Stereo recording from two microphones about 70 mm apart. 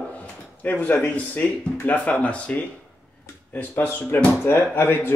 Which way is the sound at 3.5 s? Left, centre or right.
Left.